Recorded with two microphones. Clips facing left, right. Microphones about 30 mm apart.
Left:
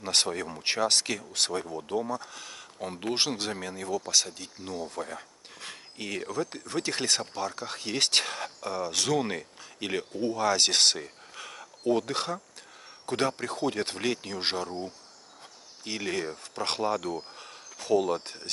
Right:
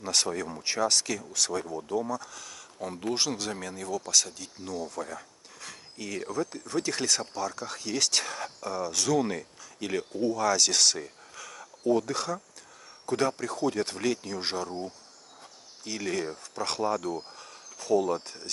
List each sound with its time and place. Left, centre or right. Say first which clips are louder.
0.0 s speech: left 1 dB; left
3.5 s speech: left 1 dB; centre
4.7 s a sound: even; left
6.5 s speech: right 1 dB; left
9.2 s speech: right 1 dB; left
11.3 s a sound: left 3 dB; left
12.1 s speech: even; left
15.8 s speech: even; left
17.4 s a sound: left 1 dB; left